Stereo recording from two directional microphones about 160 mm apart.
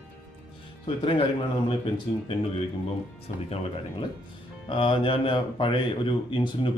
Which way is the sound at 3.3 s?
40° left (ahead or behind).